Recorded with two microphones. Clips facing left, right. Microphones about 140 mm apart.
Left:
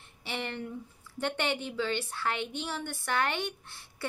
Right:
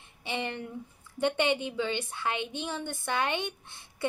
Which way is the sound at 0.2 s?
15° right (ahead or behind).